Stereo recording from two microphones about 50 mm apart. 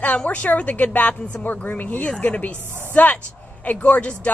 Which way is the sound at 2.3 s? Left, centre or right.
Left.